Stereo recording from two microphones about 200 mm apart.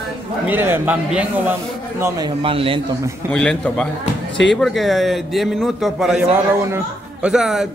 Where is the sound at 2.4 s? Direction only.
25° right (ahead or behind).